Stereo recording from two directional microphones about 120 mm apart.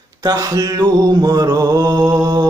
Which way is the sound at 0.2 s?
30° right (ahead or behind).